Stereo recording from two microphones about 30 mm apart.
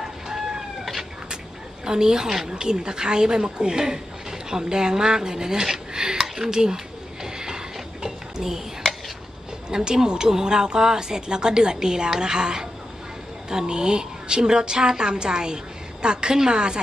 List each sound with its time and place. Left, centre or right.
1.9 s speech: right
2.5 s speech: right
7.3 s a sound: right
9.7 s speech: right